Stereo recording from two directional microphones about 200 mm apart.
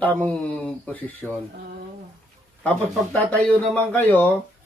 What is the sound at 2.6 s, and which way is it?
Speech, 10° left (ahead or behind).